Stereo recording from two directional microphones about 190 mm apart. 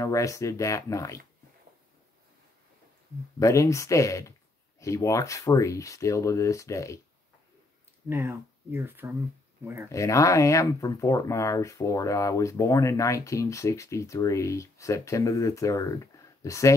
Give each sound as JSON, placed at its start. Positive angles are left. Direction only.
{"t": 0.0, "sound": "speech", "side_deg": 15}
{"t": 3.3, "sound": "speech", "side_deg": 15}
{"t": 8.1, "sound": "speech", "side_deg": -10}
{"t": 9.8, "sound": "speech", "side_deg": 15}